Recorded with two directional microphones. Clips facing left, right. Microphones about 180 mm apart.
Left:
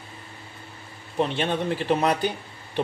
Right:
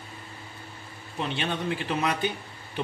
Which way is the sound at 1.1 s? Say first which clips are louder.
Left 6 dB; 40° left (ahead or behind).